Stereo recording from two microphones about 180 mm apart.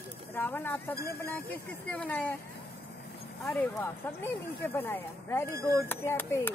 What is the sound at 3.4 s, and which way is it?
Speech, 5° left (ahead or behind).